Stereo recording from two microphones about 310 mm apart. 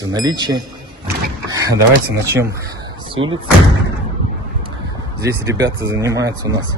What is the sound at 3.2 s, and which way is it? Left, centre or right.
Speech, right.